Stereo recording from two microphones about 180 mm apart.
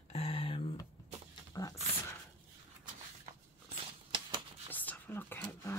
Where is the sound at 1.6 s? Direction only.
20° left (ahead or behind).